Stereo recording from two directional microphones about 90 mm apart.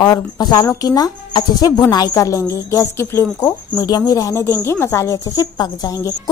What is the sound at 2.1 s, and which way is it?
A woman's voice, 35° left (ahead or behind).